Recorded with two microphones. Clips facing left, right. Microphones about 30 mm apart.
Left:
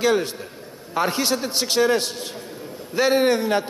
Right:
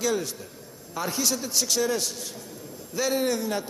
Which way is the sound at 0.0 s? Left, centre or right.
Left.